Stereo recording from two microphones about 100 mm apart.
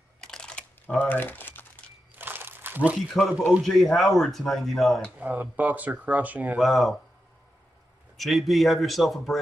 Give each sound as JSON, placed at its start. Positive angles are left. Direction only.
{"t": 0.2, "sound": "crumpling", "side_deg": 5}
{"t": 2.1, "sound": "crumpling", "side_deg": -20}
{"t": 3.1, "sound": "speech", "side_deg": 0}
{"t": 5.2, "sound": "speech", "side_deg": -15}
{"t": 6.5, "sound": "speech", "side_deg": 0}
{"t": 8.2, "sound": "speech", "side_deg": 0}